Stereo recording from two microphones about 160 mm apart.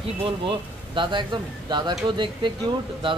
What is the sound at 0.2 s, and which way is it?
Speech, 30° right (ahead or behind).